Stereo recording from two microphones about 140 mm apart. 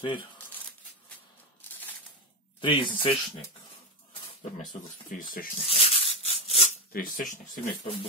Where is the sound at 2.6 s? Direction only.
35° left (ahead or behind).